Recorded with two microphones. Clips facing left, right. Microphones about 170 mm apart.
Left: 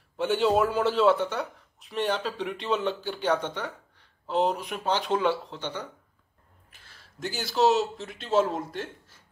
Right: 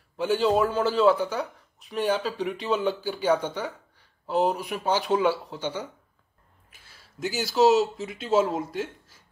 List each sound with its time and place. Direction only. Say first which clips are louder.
0.2 s speech: right 1 dB; centre (ahead or behind)